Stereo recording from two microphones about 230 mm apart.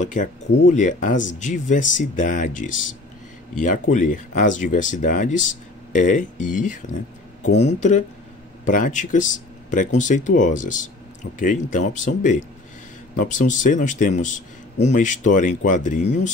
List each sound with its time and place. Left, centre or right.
0.0 s a man's voice: left